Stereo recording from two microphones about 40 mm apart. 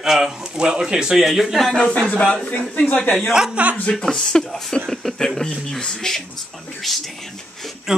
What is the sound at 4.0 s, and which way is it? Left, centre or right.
Speech, centre.